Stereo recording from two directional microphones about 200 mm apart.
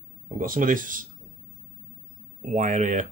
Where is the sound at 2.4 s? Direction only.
40° right (ahead or behind).